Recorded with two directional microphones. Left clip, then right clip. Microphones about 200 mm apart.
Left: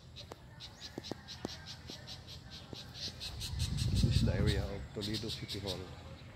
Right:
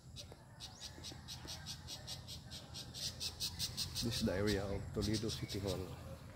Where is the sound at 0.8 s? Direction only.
55° right (ahead or behind).